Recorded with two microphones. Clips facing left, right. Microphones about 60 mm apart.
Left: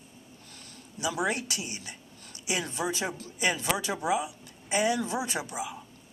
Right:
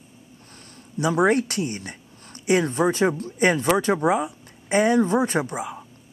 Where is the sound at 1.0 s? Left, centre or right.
Right.